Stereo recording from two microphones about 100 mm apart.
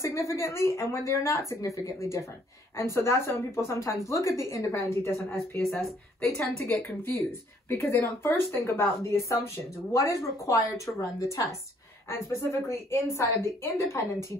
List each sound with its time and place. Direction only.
0.0 s a woman's voice: 30° left (ahead or behind)
5.6 s speech: centre (ahead or behind)
6.6 s a woman's voice: 20° left (ahead or behind)